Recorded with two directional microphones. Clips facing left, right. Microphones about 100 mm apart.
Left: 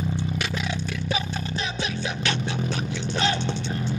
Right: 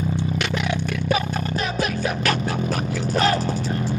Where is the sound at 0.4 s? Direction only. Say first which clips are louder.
Right 5 dB; 60° right (ahead or behind).